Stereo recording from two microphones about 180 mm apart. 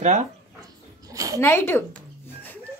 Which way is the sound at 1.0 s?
20° right (ahead or behind).